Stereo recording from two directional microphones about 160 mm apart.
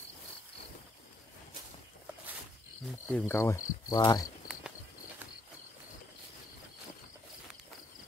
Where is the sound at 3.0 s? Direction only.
10° left (ahead or behind).